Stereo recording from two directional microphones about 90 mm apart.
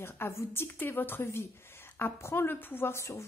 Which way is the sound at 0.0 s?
30° left (ahead or behind).